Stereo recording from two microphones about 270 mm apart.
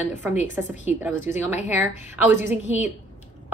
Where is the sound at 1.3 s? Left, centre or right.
Left.